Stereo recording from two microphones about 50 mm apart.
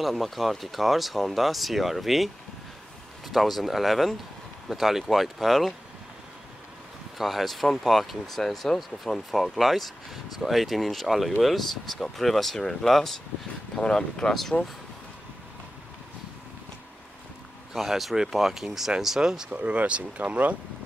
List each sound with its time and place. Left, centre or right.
0.0 s speech: centre
7.2 s speech: centre
17.7 s speech: centre
19.5 s speech: right